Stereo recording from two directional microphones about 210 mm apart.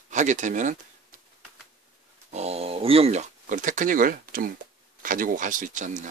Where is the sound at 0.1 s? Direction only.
35° right (ahead or behind).